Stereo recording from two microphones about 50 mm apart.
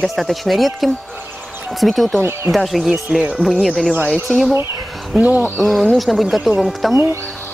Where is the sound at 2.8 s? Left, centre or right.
Centre.